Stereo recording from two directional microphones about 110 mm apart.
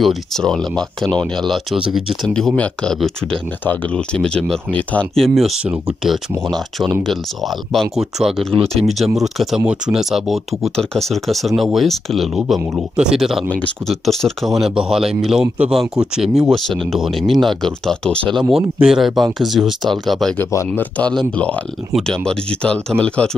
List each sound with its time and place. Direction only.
0.0 s speech: centre (ahead or behind)
2.3 s speech: 10° left (ahead or behind)
18.8 s speech: 5° right (ahead or behind)
20.3 s speech: 20° left (ahead or behind)